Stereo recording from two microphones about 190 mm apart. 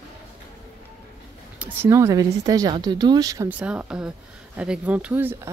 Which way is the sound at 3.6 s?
5° right (ahead or behind).